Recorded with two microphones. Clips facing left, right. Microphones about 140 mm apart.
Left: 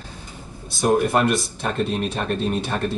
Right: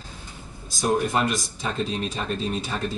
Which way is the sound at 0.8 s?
55° left (ahead or behind).